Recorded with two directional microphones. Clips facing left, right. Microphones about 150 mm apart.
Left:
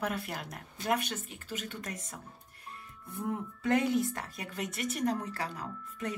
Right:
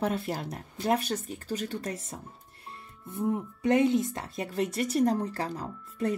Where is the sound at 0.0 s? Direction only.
30° right (ahead or behind).